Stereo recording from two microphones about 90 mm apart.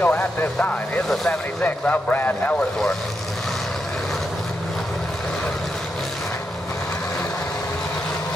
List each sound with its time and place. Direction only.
0.0 s speech: 15° left (ahead or behind)
1.0 s speech: centre (ahead or behind)
1.6 s speech: 15° left (ahead or behind)